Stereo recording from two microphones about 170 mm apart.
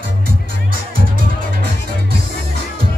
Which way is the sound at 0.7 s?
55° right (ahead or behind).